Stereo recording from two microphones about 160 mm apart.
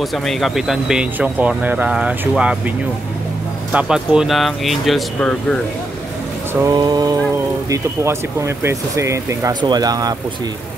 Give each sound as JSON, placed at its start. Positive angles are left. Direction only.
{"t": 0.0, "sound": "speech", "side_deg": 0}
{"t": 3.7, "sound": "speech", "side_deg": -5}
{"t": 6.6, "sound": "speech", "side_deg": -25}